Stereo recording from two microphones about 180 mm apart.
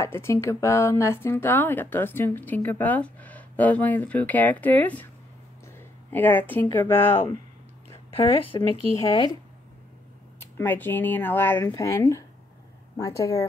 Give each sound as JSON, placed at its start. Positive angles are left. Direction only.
{"t": 0.0, "sound": "speech", "side_deg": 15}
{"t": 7.9, "sound": "speech", "side_deg": 30}
{"t": 8.9, "sound": "speech", "side_deg": 20}
{"t": 10.4, "sound": "speech", "side_deg": 10}